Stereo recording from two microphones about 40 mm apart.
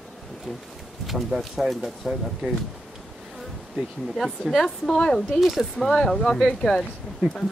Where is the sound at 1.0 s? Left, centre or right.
Centre.